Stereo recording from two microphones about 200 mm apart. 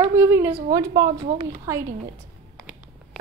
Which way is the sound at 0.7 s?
20° right (ahead or behind).